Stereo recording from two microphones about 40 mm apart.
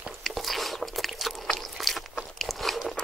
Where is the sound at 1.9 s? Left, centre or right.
Centre.